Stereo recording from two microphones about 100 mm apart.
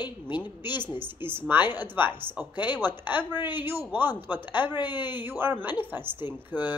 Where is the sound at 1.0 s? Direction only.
20° right (ahead or behind).